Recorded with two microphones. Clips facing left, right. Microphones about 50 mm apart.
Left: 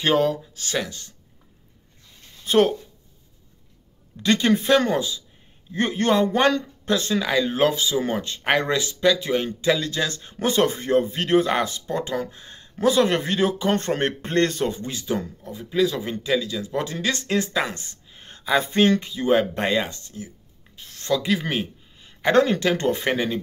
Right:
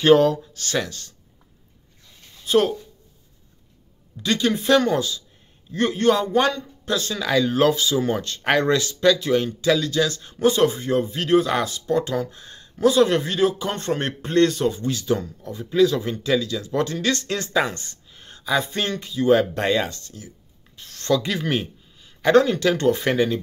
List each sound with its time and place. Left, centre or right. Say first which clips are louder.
0.0 s speech: right 5 dB; centre
0.6 s speech: right 2 dB; centre
2.4 s speech: left 1 dB; left
4.2 s a man's voice: left 2 dB; left
4.6 s a man's voice: right 1 dB; left
10.5 s a man's voice: even; left
11.8 s speech: right 4 dB; centre
12.7 s a man's voice: right 2 dB; left
14.9 s speech: right 4 dB; left
15.5 s speech: right 4 dB; centre
18.1 s speech: left 1 dB; left
20.7 s a sound: right 2 dB; centre
22.2 s speech: right 2 dB; left